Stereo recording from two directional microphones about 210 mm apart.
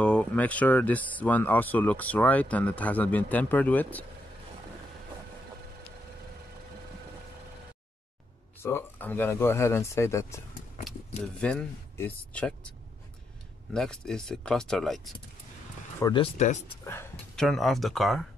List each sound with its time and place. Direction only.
0.0 s speech: 5° left (ahead or behind)
8.6 s speech: 10° left (ahead or behind)
11.4 s speech: 5° left (ahead or behind)
13.7 s speech: 5° left (ahead or behind)
16.0 s speech: 25° left (ahead or behind)
16.8 s speech: 10° left (ahead or behind)